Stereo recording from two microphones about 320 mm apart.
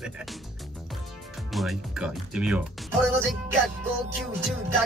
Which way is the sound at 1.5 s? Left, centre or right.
Centre.